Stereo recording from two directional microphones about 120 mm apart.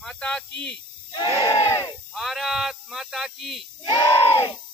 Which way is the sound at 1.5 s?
25° left (ahead or behind).